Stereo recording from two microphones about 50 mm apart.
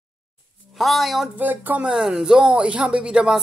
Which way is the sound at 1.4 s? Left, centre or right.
Right.